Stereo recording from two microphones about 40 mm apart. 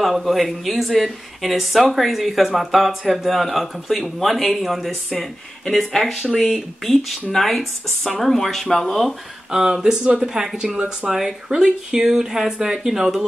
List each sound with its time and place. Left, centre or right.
0.0 s speech: centre
6.4 s speech: centre
9.5 s speech: centre